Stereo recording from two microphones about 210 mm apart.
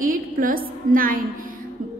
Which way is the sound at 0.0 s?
40° right (ahead or behind).